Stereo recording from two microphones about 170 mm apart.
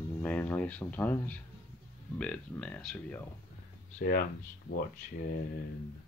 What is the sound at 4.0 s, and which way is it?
Speech, 60° left (ahead or behind).